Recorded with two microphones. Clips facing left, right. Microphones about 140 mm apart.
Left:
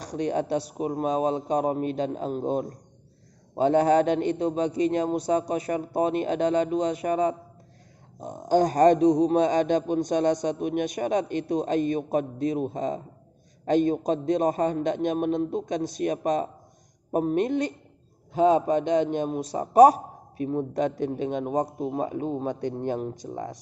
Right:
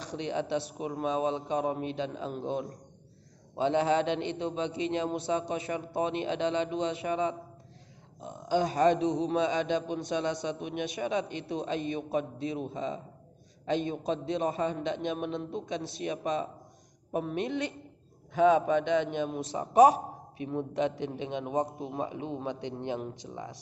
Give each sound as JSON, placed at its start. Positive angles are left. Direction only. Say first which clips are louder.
{"t": 0.0, "sound": "a man's voice", "louder": "left 6 dB", "side_deg": 45}